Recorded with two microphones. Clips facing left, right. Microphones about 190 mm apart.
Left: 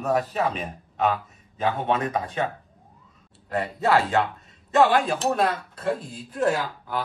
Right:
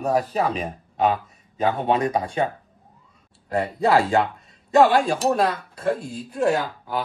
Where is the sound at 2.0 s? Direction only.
Centre (ahead or behind).